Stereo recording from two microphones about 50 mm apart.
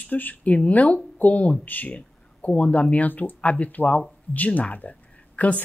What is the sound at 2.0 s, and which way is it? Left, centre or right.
Speech, left.